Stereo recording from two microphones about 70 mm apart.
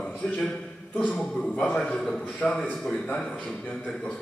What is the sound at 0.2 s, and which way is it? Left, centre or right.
A man's voice, centre.